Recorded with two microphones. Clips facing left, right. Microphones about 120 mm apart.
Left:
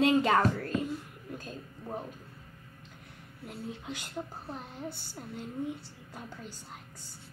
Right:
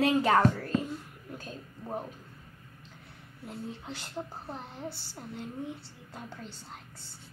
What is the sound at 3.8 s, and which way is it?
Speech, 10° left (ahead or behind).